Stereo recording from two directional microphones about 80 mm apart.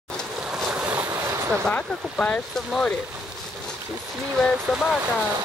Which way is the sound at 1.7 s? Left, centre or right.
Centre.